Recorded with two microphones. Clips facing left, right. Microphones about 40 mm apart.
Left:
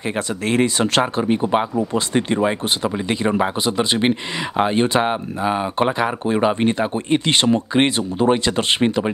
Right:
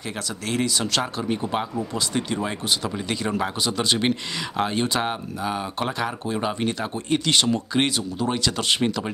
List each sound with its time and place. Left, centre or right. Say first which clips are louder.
0.5 s speech: left 6 dB; left